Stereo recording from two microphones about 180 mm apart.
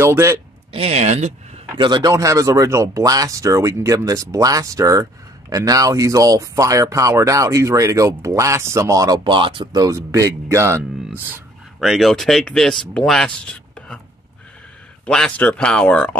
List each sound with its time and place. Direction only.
0.0 s speech: 15° right (ahead or behind)
0.7 s speech: 35° right (ahead or behind)
1.8 s speech: 25° right (ahead or behind)
10.8 s a sound: centre (ahead or behind)
11.2 s speech: 5° right (ahead or behind)
15.0 s speech: 5° left (ahead or behind)